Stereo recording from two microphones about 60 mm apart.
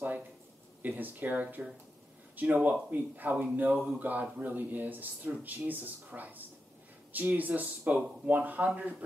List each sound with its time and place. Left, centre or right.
0.8 s speech: right